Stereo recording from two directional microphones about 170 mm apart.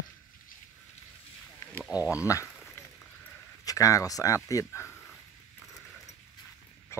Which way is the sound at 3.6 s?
20° left (ahead or behind).